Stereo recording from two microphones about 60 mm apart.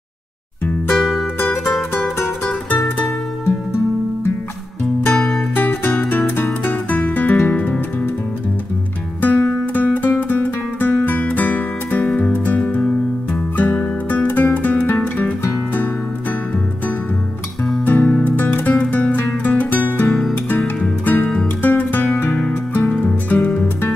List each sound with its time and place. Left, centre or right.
0.9 s music: centre
5.1 s music: centre
5.6 s music: left
9.2 s music: left
17.8 s music: left
20.1 s music: centre
20.4 s music: left